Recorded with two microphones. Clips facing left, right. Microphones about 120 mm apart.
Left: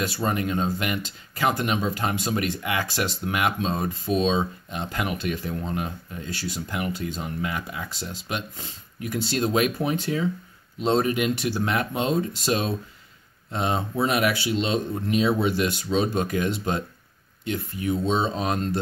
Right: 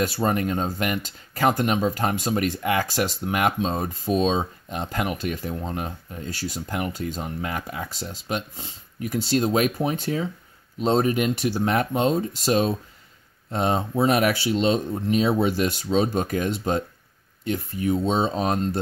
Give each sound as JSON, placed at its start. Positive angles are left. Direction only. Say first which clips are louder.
{"t": 0.0, "sound": "speech", "louder": "right 3 dB", "side_deg": -40}
{"t": 5.5, "sound": "speech", "louder": "even", "side_deg": -25}